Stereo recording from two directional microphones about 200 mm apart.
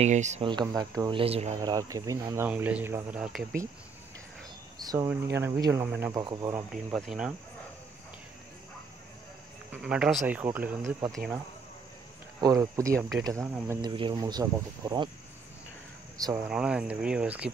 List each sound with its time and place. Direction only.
0.0 s speech: 35° right (ahead or behind)
0.5 s speech: 20° right (ahead or behind)
1.6 s speech: 15° right (ahead or behind)
4.8 s speech: 15° right (ahead or behind)
7.1 s speech: 5° right (ahead or behind)
9.7 s speech: 5° right (ahead or behind)
12.4 s speech: 20° right (ahead or behind)
16.4 s speech: 5° right (ahead or behind)